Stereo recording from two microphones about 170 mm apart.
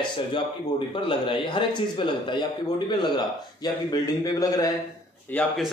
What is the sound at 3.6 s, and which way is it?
A man's voice, 20° left (ahead or behind).